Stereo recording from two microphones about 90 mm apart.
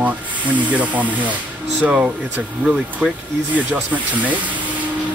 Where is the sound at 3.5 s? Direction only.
15° right (ahead or behind).